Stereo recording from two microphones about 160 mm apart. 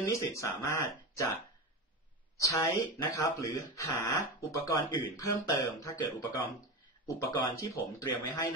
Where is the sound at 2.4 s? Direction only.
20° left (ahead or behind).